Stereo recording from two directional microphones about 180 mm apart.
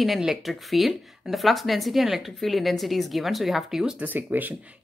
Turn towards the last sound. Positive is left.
turn(degrees=-10)  # may be behind; listen again after turning